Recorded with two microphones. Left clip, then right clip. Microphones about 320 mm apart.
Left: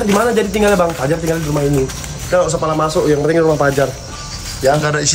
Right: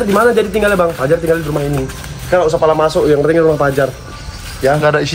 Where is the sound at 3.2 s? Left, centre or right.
Centre.